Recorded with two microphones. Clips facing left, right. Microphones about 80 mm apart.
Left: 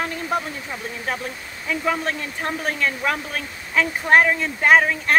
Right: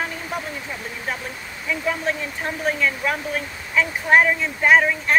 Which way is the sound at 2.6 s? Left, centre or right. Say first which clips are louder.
Right 2 dB; left.